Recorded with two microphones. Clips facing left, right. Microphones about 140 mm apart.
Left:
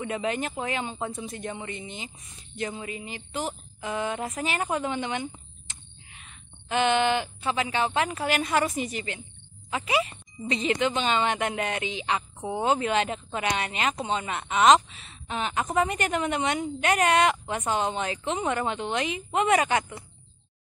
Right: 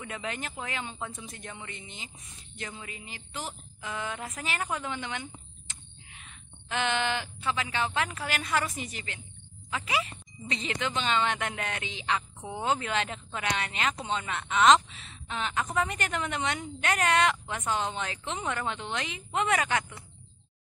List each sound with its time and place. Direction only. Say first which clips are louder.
0.0 s a woman's voice: left 8 dB; 25° left (ahead or behind)